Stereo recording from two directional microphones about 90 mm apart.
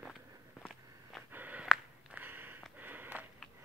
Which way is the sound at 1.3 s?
15° right (ahead or behind).